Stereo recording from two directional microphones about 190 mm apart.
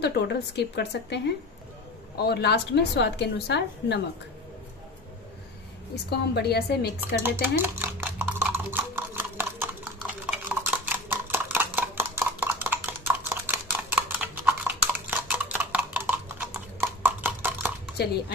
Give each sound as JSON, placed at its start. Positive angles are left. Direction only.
{"t": 0.0, "sound": "speech", "side_deg": 60}
{"t": 6.0, "sound": "speech", "side_deg": 60}
{"t": 7.2, "sound": "stir", "side_deg": -10}
{"t": 10.6, "sound": "a sound", "side_deg": -10}
{"t": 17.9, "sound": "speech", "side_deg": 60}